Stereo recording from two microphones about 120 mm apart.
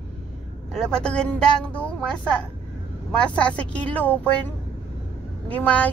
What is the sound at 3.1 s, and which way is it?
Speech, 10° left (ahead or behind).